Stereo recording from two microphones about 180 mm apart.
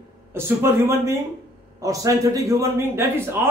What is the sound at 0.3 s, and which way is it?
A man's voice, 15° right (ahead or behind).